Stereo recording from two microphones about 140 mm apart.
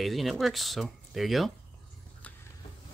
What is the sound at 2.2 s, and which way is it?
Vehicle, 10° left (ahead or behind).